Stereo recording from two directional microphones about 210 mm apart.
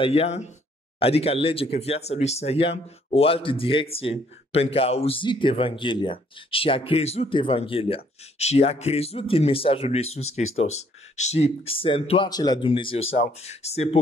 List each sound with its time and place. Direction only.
0.0 s speech: 30° left (ahead or behind)